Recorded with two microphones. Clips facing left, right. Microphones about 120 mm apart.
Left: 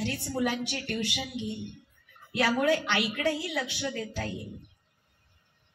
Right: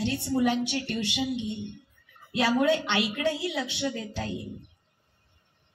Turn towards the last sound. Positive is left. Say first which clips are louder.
# right 1 dB
turn(degrees=-25)  # may be behind; listen again after turning